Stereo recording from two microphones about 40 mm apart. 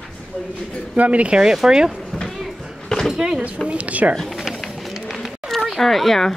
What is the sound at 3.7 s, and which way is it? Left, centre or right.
Speech, right.